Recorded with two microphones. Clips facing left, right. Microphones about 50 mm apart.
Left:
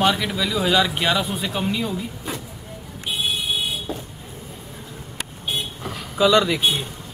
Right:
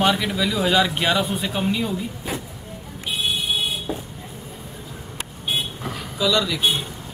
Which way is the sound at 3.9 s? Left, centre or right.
Centre.